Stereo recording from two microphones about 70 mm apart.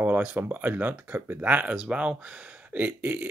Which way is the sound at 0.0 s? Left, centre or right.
Right.